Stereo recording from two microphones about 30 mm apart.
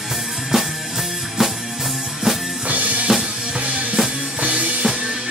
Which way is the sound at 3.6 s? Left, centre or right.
Right.